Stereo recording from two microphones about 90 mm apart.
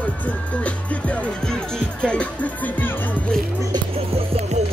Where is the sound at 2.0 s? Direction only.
10° left (ahead or behind).